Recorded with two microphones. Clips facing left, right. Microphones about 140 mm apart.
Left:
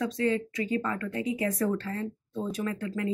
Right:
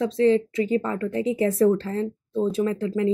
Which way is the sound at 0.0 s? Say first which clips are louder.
Right 8 dB; 30° right (ahead or behind).